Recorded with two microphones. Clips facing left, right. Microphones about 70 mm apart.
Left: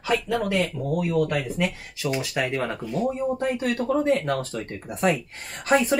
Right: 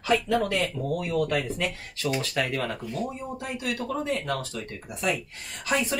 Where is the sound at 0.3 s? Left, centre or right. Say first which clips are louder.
Left 1 dB; centre.